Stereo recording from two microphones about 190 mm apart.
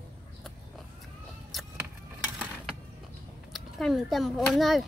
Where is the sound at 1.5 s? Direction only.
Centre (ahead or behind).